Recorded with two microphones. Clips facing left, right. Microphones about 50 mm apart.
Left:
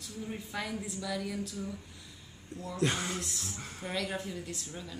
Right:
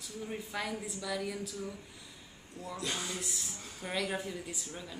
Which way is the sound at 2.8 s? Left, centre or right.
Left.